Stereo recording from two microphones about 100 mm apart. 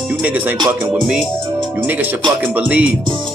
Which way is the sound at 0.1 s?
15° right (ahead or behind).